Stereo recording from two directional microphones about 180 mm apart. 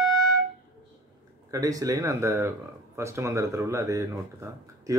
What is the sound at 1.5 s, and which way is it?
Speech, 20° right (ahead or behind).